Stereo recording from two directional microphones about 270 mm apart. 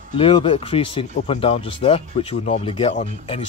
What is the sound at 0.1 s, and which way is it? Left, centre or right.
Speech, centre.